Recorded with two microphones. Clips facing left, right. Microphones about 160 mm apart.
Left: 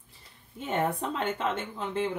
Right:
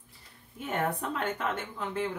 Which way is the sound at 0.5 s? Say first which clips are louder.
Left 2 dB; 25° left (ahead or behind).